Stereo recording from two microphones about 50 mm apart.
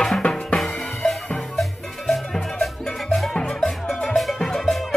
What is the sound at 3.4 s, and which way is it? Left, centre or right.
Music, centre.